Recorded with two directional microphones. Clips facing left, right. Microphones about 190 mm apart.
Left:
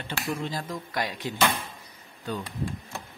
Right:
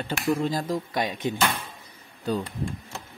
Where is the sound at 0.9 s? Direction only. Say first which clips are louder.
Even; 20° right (ahead or behind).